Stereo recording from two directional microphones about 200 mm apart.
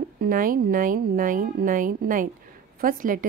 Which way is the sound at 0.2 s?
45° right (ahead or behind).